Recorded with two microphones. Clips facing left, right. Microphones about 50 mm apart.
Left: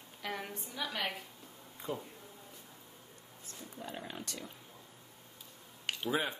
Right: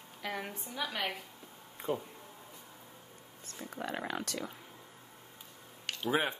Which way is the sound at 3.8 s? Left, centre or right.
Right.